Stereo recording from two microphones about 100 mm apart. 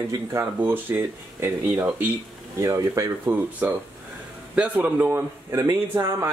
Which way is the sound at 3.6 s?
20° right (ahead or behind).